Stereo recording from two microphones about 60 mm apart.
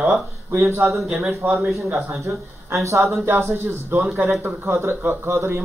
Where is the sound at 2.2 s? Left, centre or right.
Right.